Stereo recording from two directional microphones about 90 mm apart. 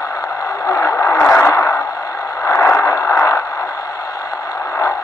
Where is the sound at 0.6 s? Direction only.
30° left (ahead or behind).